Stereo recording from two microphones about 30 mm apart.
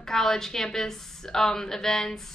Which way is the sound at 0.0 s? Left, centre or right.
Centre.